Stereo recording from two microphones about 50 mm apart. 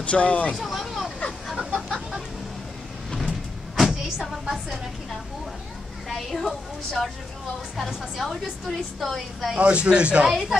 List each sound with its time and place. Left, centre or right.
0.0 s speech: left
0.5 s a sound: centre
3.3 s vehicle: centre
4.2 s music: centre
6.0 s a woman's voice: centre
9.6 s a man's voice: right
10.2 s a woman's voice: centre